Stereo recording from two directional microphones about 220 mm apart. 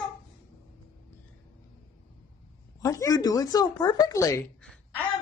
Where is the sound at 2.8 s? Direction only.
15° left (ahead or behind).